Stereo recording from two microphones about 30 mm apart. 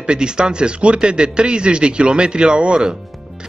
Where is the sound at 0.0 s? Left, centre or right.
Right.